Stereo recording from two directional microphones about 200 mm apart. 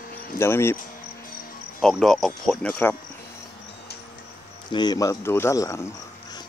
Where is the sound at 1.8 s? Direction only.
Centre (ahead or behind).